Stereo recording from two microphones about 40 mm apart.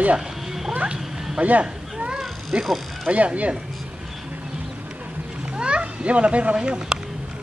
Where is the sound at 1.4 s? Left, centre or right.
Right.